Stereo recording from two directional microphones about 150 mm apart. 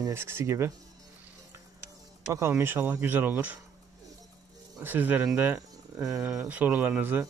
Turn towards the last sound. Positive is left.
turn(degrees=-15)  # may be behind; listen again after turning